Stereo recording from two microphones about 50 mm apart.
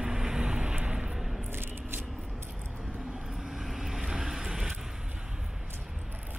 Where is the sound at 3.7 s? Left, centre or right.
Centre.